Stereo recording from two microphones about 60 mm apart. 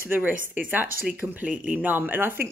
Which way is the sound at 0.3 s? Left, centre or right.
Right.